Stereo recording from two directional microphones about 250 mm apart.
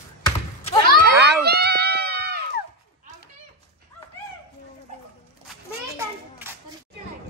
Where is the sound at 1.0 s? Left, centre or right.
Right.